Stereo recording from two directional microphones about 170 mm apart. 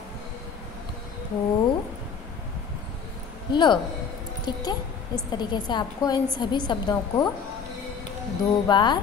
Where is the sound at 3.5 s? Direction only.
25° left (ahead or behind).